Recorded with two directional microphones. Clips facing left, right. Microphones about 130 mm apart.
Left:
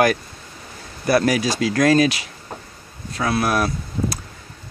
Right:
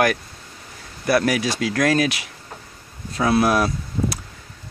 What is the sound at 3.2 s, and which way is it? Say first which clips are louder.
Speech: right 2 dB; 20° right (ahead or behind).